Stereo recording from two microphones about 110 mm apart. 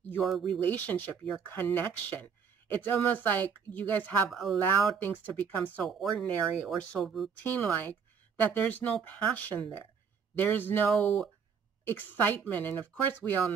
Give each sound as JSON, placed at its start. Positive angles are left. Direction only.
{"t": 0.2, "sound": "speech", "side_deg": 0}
{"t": 0.7, "sound": "speech", "side_deg": 15}
{"t": 4.3, "sound": "speech", "side_deg": 0}
{"t": 4.9, "sound": "speech", "side_deg": 15}
{"t": 5.9, "sound": "speech", "side_deg": 0}